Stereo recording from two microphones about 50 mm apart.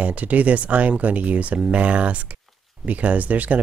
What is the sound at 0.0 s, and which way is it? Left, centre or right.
Speech, right.